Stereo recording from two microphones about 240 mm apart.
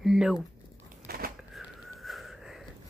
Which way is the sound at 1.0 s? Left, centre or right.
Right.